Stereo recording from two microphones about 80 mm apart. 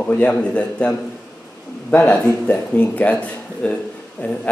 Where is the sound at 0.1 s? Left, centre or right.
Centre.